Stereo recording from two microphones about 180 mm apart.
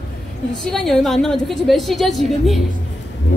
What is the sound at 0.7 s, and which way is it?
A woman's voice, centre (ahead or behind).